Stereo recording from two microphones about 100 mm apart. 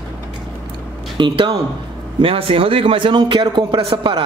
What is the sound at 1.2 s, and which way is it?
A man's voice, 60° right (ahead or behind).